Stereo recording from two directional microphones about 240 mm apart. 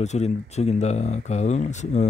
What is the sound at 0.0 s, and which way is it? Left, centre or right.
Speech, left.